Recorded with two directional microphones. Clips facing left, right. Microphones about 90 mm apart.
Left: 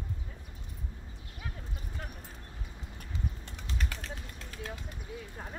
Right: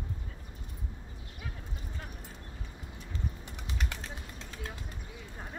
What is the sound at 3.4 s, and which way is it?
Typing, 10° right (ahead or behind).